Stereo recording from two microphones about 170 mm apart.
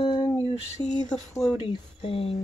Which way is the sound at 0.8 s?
45° left (ahead or behind).